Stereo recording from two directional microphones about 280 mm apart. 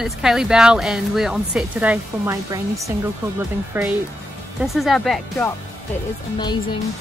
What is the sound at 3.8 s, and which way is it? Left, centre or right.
Speech, centre.